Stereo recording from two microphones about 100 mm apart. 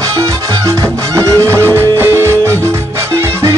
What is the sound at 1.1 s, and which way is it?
Music, 30° right (ahead or behind).